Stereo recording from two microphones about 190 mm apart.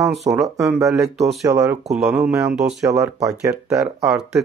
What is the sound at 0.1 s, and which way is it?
Speech, centre (ahead or behind).